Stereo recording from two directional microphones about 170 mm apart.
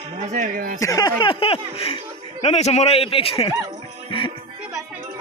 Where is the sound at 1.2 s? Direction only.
30° left (ahead or behind).